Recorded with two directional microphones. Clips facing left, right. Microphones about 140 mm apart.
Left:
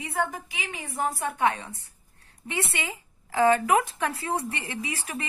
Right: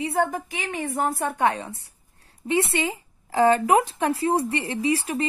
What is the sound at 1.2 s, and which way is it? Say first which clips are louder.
A woman's voice: right 1 dB; 40° right (ahead or behind).